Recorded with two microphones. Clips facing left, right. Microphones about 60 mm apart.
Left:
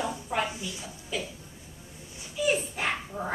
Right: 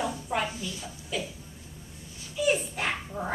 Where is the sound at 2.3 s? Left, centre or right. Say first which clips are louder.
Right 1 dB; centre.